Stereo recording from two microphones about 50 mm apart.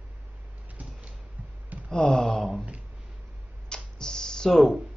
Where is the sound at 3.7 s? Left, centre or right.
Centre.